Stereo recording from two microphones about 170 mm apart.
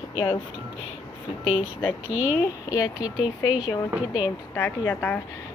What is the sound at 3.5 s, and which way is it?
Speech, 5° right (ahead or behind).